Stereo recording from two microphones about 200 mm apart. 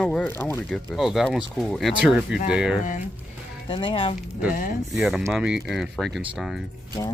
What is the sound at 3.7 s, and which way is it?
Speech, 25° left (ahead or behind).